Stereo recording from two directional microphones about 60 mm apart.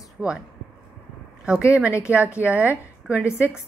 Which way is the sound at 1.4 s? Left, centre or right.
Centre.